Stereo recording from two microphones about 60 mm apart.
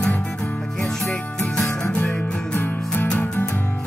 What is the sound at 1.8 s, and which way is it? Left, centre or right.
Music, left.